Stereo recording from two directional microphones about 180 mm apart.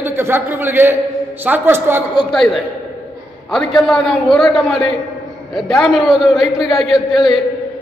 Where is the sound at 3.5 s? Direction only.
Centre (ahead or behind).